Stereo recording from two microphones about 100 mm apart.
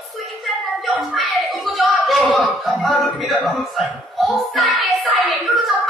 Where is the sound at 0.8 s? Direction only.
Centre (ahead or behind).